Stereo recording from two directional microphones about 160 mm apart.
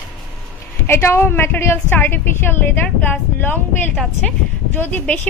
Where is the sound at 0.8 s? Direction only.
15° left (ahead or behind).